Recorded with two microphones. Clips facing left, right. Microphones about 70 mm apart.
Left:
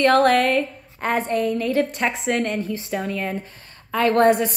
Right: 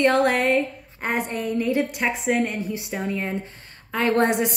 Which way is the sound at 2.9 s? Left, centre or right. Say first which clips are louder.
Left 1 dB; centre.